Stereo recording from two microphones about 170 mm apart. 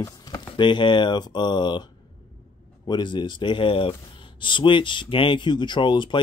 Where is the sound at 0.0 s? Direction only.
15° left (ahead or behind).